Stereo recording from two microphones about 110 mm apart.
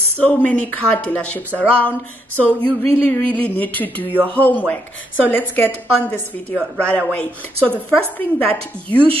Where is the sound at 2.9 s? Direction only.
15° left (ahead or behind).